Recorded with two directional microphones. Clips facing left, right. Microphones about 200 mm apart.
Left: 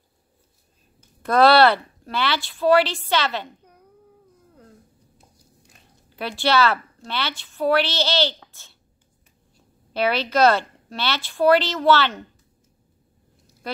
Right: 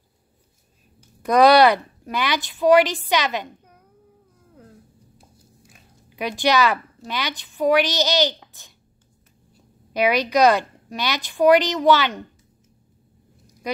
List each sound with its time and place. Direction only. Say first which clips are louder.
1.2 s speech: right 1 dB; 15° right (ahead or behind)
5.6 s a sound: right 3 dB; 10° right (ahead or behind)
7.0 s speech: even; 15° right (ahead or behind)
9.9 s speech: right 2 dB; 15° right (ahead or behind)